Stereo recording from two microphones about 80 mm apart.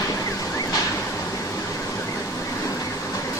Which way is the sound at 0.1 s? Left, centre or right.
Left.